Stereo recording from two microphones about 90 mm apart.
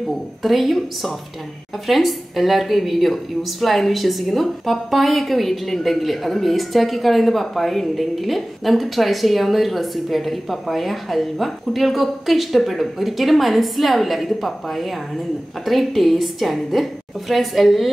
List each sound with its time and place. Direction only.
0.4 s a woman's voice: centre (ahead or behind)